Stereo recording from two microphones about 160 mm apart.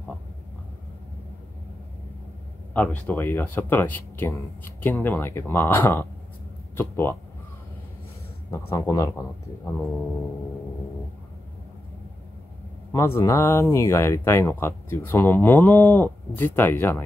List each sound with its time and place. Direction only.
2.7 s speech: 10° left (ahead or behind)
8.5 s speech: 15° left (ahead or behind)
12.9 s speech: 15° left (ahead or behind)